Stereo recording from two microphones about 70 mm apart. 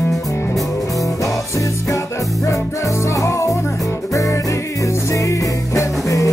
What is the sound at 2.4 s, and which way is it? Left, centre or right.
Music, left.